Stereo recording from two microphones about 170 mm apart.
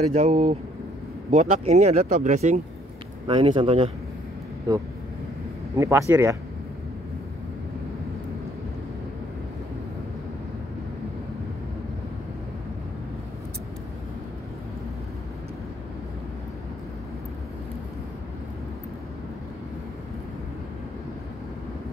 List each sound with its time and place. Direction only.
0.1 s speech: 40° right (ahead or behind)
3.3 s speech: 30° right (ahead or behind)
5.8 s speech: 15° right (ahead or behind)